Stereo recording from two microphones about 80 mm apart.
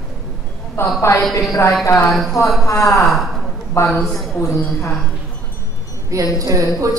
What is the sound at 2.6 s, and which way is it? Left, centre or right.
Speech, left.